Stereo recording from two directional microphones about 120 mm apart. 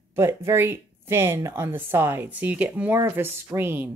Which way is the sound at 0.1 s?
20° right (ahead or behind).